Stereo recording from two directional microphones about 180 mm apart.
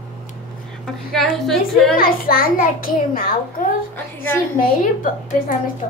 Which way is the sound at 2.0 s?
55° left (ahead or behind).